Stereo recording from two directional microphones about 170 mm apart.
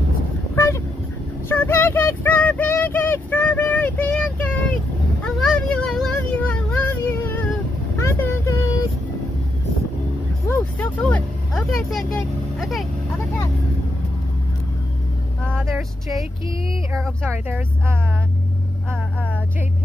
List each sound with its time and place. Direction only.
0.6 s a sound: 15° left (ahead or behind)
8.0 s vehicle: 15° left (ahead or behind)
10.5 s a sound: 10° left (ahead or behind)
12.5 s vehicle: centre (ahead or behind)
15.4 s vehicle: centre (ahead or behind)
17.5 s speech: 10° right (ahead or behind)